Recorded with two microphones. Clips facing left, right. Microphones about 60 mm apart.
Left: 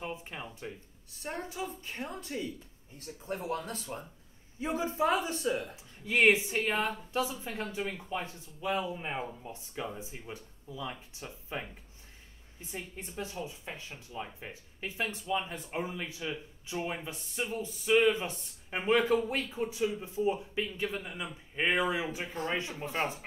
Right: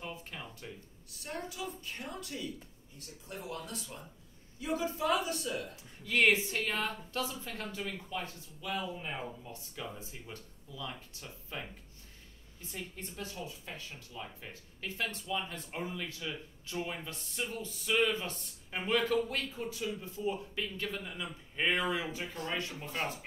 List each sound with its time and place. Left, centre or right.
0.0 s a sound: left
1.2 s speech: left
4.6 s speech: left